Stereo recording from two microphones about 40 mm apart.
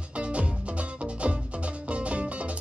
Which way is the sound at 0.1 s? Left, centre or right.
Right.